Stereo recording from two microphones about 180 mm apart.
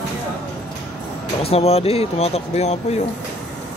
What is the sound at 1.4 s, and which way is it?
Speech, 35° left (ahead or behind).